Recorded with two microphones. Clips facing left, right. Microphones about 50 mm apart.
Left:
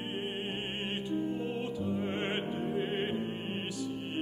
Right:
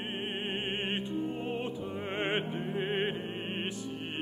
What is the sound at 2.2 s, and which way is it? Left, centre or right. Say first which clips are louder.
Music: right 1 dB; right.